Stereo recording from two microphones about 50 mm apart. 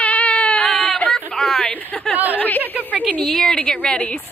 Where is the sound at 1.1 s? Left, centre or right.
Centre.